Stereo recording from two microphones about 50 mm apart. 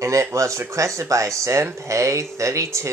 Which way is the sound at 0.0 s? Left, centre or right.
Right.